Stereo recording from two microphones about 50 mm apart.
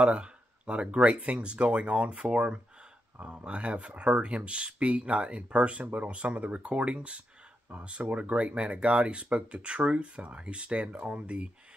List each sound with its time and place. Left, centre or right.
0.0 s speech: right